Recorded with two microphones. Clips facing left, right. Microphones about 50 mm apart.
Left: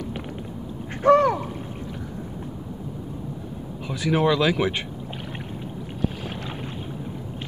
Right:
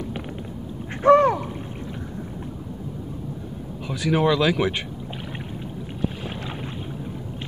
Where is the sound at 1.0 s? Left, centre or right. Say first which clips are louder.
Right 2 dB; right.